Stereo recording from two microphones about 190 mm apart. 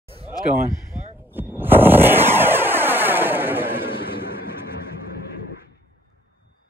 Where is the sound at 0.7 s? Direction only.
20° left (ahead or behind).